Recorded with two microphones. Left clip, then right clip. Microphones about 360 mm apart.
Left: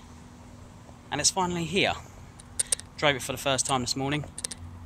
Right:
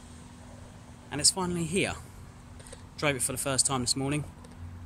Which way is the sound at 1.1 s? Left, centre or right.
Centre.